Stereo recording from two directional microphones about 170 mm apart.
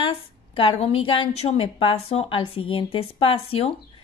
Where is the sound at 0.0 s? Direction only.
30° left (ahead or behind).